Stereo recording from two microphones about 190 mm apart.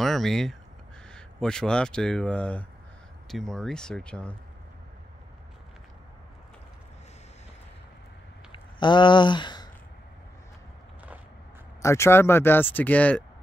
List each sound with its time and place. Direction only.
0.0 s speech: centre (ahead or behind)
8.5 s a sound: 25° left (ahead or behind)
11.8 s speech: 15° left (ahead or behind)